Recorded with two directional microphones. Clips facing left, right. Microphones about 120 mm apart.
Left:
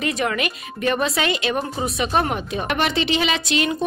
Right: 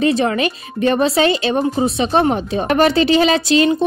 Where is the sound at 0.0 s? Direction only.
30° right (ahead or behind).